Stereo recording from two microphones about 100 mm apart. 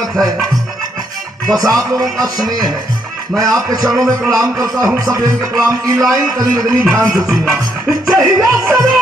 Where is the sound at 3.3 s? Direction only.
10° right (ahead or behind).